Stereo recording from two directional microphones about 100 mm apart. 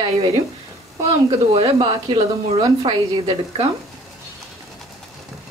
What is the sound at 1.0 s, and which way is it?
A woman's voice, 60° right (ahead or behind).